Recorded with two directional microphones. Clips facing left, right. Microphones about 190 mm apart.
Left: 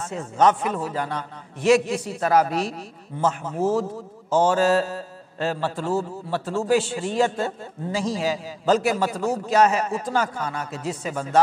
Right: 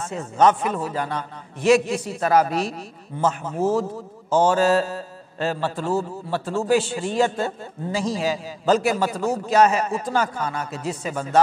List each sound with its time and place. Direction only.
0.0 s a man's voice: 20° right (ahead or behind)
4.5 s a man's voice: 10° right (ahead or behind)